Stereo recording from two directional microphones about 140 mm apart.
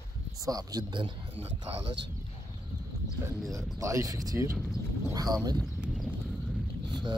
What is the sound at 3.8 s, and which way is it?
Speech, 20° right (ahead or behind).